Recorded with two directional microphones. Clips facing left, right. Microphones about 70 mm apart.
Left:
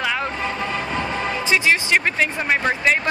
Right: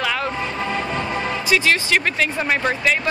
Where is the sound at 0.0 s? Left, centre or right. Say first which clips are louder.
Right 1 dB; left.